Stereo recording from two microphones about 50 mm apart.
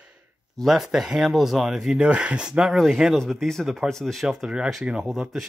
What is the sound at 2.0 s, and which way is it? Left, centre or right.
Speech, right.